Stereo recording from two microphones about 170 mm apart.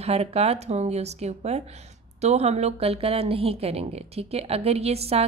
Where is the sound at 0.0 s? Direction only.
35° right (ahead or behind).